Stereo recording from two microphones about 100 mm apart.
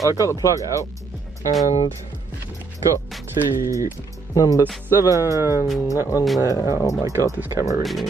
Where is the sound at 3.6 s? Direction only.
30° right (ahead or behind).